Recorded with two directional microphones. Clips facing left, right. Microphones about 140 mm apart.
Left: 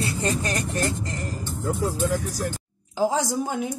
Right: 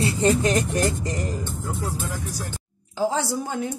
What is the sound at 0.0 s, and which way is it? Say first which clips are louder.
Speech: right 6 dB; 20° right (ahead or behind).